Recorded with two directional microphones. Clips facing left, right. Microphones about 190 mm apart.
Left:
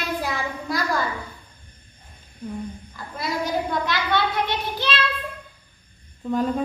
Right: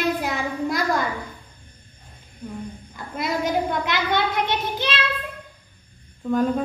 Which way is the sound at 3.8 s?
20° right (ahead or behind).